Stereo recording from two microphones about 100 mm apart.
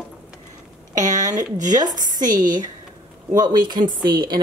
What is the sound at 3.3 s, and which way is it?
Speech, 40° right (ahead or behind).